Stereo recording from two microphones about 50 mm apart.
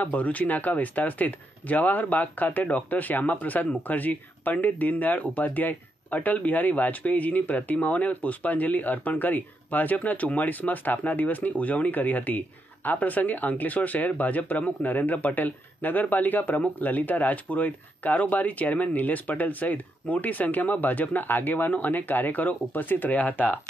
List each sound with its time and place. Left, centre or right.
0.0 s speech: left